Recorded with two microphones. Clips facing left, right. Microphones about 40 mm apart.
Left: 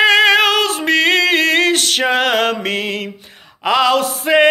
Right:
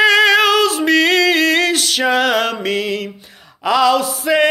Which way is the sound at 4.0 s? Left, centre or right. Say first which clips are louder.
Left 1 dB; left.